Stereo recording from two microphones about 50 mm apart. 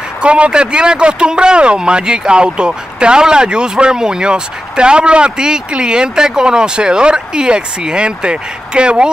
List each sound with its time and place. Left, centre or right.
0.2 s speech: right